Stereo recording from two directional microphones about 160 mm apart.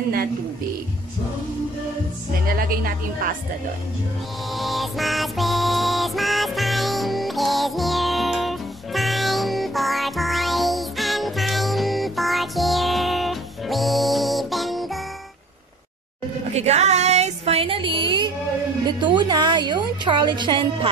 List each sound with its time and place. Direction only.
2.4 s a woman's voice: 65° right (ahead or behind)
4.6 s music: centre (ahead or behind)
16.5 s music: 45° right (ahead or behind)
18.9 s speech: 30° right (ahead or behind)